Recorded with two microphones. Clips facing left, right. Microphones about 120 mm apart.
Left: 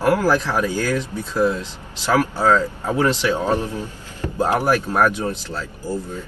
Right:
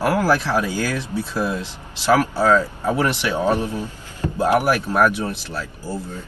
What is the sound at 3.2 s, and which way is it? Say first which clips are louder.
Speech: even; 15° right (ahead or behind).